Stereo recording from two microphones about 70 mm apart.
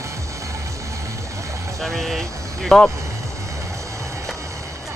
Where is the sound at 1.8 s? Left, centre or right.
Centre.